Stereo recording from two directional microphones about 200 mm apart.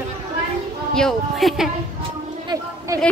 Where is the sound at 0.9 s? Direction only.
Centre (ahead or behind).